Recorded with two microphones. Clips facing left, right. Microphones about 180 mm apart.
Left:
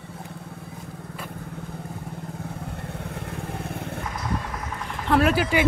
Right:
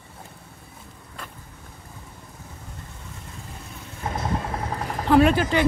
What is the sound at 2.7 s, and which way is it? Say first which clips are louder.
Vehicle: left 8 dB; 65° left (ahead or behind).